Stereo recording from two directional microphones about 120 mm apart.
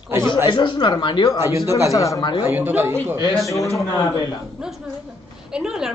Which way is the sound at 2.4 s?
15° right (ahead or behind).